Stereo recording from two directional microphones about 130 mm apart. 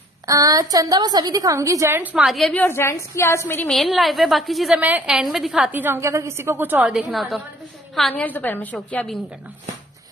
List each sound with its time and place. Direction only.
0.3 s a woman's voice: 30° right (ahead or behind)
2.2 s a woman's voice: centre (ahead or behind)
2.5 s a woman's voice: 15° left (ahead or behind)
3.6 s a woman's voice: 5° left (ahead or behind)
4.7 s a woman's voice: 10° right (ahead or behind)
8.1 s a woman's voice: 10° left (ahead or behind)